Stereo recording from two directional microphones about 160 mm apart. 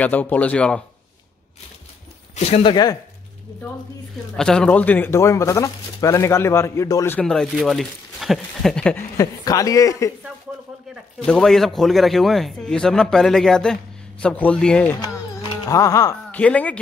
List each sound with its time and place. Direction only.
0.0 s speech: 10° left (ahead or behind)
2.3 s speech: 40° left (ahead or behind)
2.7 s a man's voice: 25° left (ahead or behind)
4.4 s speech: 5° left (ahead or behind)
7.2 s a man's voice: centre (ahead or behind)
9.1 s a man's voice: 20° left (ahead or behind)
11.2 s a man's voice: 5° left (ahead or behind)
15.6 s a man's voice: 20° left (ahead or behind)
16.3 s speech: 10° left (ahead or behind)